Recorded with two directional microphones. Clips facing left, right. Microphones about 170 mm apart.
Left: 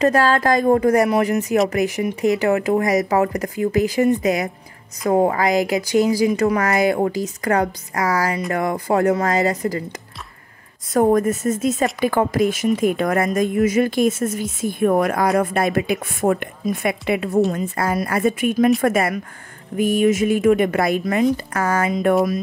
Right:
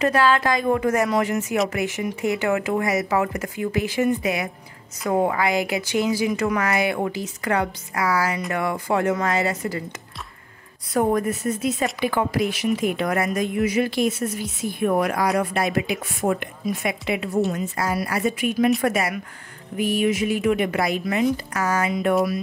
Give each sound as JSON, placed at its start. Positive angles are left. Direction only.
{"t": 0.0, "sound": "speech", "side_deg": 40}
{"t": 10.9, "sound": "a woman's voice", "side_deg": 45}